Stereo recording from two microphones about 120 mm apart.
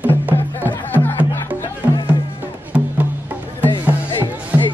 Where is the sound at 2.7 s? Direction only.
10° right (ahead or behind).